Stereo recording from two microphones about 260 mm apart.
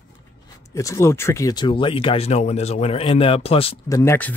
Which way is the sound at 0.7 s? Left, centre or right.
Centre.